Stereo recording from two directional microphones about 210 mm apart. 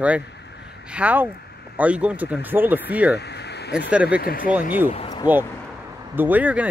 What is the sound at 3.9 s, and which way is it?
Speech, 5° right (ahead or behind).